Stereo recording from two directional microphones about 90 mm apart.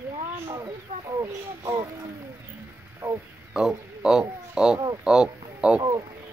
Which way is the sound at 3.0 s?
20° right (ahead or behind).